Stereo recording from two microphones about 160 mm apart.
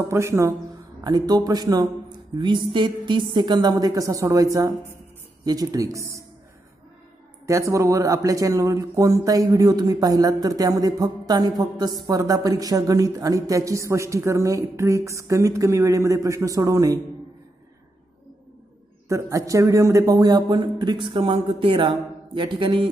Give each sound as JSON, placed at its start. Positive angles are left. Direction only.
{"t": 0.0, "sound": "speech", "side_deg": -15}
{"t": 7.4, "sound": "speech", "side_deg": -20}
{"t": 19.0, "sound": "speech", "side_deg": -20}